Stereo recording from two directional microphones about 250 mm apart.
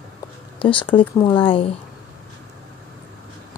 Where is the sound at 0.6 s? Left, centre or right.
Left.